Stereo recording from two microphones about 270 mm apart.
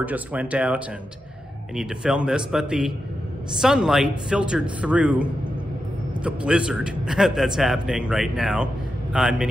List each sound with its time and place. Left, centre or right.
0.0 s a man's voice: centre